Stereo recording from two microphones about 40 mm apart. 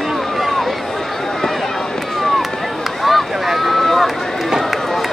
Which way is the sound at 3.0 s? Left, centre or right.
Centre.